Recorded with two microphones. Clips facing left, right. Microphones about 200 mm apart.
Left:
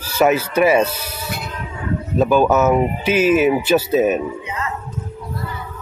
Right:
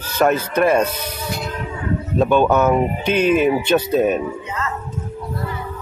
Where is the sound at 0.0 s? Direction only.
10° left (ahead or behind).